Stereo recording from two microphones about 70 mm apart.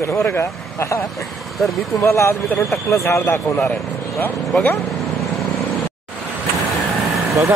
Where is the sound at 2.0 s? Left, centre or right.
Left.